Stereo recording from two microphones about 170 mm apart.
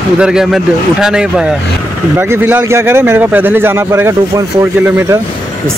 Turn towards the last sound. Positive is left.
turn(degrees=-15)  # may be behind; listen again after turning